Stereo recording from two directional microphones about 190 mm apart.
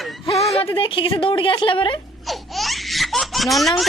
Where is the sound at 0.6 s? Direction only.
25° left (ahead or behind).